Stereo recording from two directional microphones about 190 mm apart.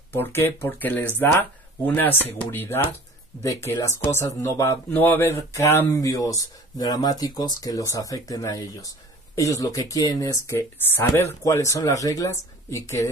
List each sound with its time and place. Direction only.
0.1 s speech: 10° left (ahead or behind)